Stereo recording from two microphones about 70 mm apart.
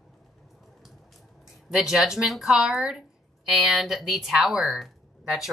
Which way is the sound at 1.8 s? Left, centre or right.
Centre.